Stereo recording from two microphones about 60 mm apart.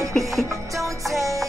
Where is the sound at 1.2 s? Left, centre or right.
Right.